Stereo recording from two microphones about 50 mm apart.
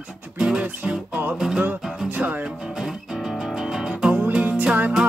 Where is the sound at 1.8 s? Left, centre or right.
Centre.